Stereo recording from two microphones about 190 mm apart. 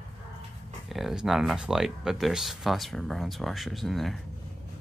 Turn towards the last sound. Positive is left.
turn(degrees=0)  # may be behind; listen again after turning